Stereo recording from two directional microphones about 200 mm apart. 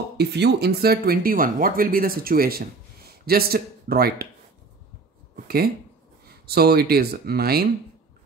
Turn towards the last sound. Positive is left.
turn(degrees=-50)  # may be behind; listen again after turning